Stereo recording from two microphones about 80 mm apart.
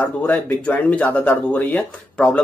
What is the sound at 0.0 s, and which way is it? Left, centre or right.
Speech, centre.